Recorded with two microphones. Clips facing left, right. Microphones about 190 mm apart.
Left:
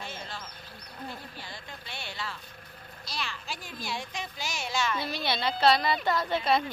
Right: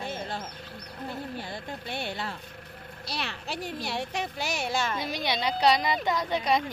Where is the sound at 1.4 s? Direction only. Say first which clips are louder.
Right 7 dB; 55° right (ahead or behind).